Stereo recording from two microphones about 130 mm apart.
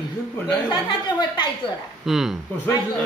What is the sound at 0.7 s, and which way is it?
Speech, 35° left (ahead or behind).